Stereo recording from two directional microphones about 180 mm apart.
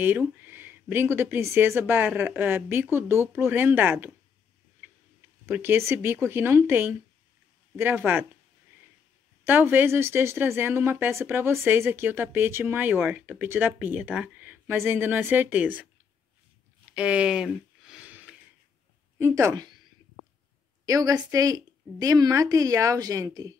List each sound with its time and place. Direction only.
0.0 s speech: 10° right (ahead or behind)
5.5 s speech: 10° right (ahead or behind)
9.5 s speech: 10° right (ahead or behind)
16.9 s a sound: 5° right (ahead or behind)
19.1 s speech: 15° right (ahead or behind)
20.8 s a woman's voice: 20° right (ahead or behind)